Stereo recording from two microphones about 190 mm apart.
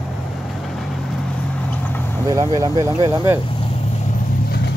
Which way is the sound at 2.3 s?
20° right (ahead or behind).